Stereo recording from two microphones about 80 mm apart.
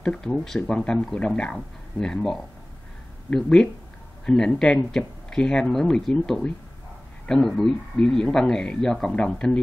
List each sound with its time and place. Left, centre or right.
0.0 s speech: centre
3.3 s speech: centre